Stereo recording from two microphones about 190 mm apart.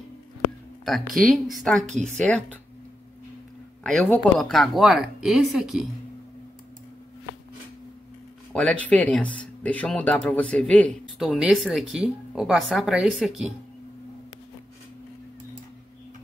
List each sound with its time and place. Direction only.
1.1 s speech: centre (ahead or behind)
1.8 s a woman's voice: 40° right (ahead or behind)
2.1 s speech: 5° left (ahead or behind)
3.8 s speech: centre (ahead or behind)
8.5 s speech: 5° left (ahead or behind)